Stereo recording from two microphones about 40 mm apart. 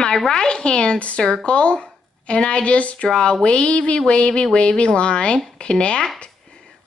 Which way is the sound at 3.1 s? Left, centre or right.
Centre.